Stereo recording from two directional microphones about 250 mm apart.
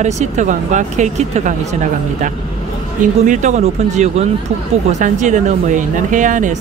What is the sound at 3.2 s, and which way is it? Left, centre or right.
Speech, right.